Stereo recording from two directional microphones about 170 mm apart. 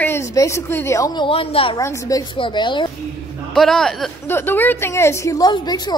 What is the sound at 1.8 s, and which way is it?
A woman's voice, 20° left (ahead or behind).